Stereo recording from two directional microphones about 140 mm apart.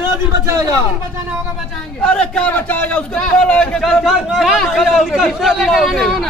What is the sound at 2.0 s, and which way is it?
A man's voice, 5° left (ahead or behind).